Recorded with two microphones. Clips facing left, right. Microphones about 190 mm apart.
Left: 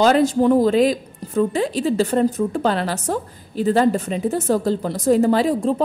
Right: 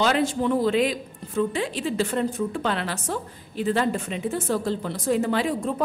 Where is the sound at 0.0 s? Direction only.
40° left (ahead or behind).